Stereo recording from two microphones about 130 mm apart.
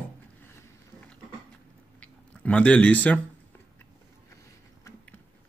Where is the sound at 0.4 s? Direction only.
15° left (ahead or behind).